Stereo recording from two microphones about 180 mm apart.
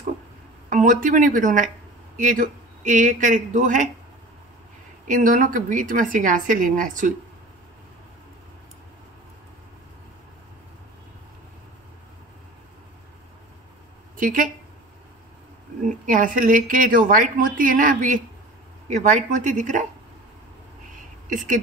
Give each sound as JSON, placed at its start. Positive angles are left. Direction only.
{"t": 0.7, "sound": "a woman's voice", "side_deg": -50}
{"t": 5.0, "sound": "a woman's voice", "side_deg": -50}
{"t": 14.1, "sound": "speech", "side_deg": -50}
{"t": 16.1, "sound": "a woman's voice", "side_deg": -50}
{"t": 21.3, "sound": "speech", "side_deg": -45}